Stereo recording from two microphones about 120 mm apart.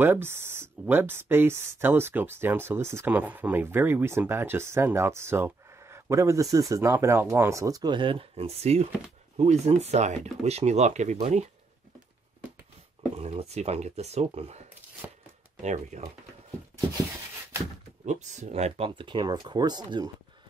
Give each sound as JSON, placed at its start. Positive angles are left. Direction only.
{"t": 0.0, "sound": "speech", "side_deg": -20}
{"t": 13.2, "sound": "speech", "side_deg": -60}
{"t": 15.0, "sound": "shuffling cards", "side_deg": -15}
{"t": 15.6, "sound": "speech", "side_deg": -75}
{"t": 18.0, "sound": "speech", "side_deg": -80}
{"t": 18.9, "sound": "speech", "side_deg": -40}